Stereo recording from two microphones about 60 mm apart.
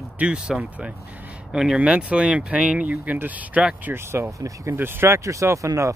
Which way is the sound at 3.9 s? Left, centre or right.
Right.